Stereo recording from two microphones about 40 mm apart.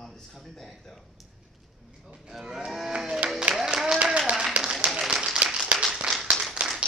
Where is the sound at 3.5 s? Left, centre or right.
Right.